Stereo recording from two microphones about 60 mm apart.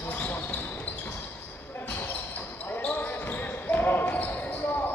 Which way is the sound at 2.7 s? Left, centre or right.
Left.